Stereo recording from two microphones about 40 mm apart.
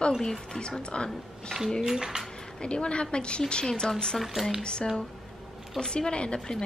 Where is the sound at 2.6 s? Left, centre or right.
Left.